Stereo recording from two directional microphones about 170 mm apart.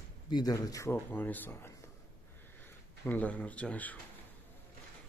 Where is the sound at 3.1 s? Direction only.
10° left (ahead or behind).